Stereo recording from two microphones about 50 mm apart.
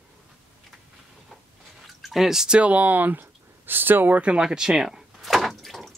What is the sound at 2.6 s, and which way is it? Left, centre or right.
Speech, right.